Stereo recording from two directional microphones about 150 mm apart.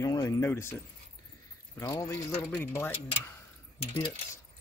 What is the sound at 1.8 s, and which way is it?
Speech, 20° left (ahead or behind).